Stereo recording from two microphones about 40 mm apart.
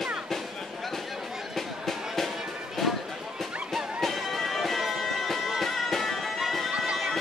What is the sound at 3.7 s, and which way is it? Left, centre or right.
Music, centre.